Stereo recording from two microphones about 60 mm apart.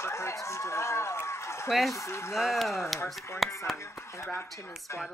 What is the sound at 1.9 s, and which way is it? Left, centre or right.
Speech, left.